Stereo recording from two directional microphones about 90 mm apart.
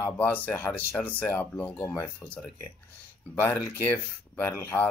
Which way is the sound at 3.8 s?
25° left (ahead or behind).